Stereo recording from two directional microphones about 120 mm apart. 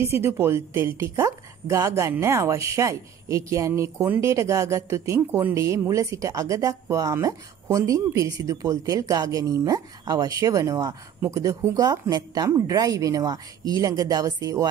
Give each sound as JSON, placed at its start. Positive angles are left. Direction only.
{"t": 0.0, "sound": "a woman's voice", "side_deg": -20}